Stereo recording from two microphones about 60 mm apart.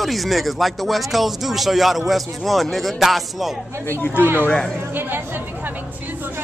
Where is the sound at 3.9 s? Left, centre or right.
Left.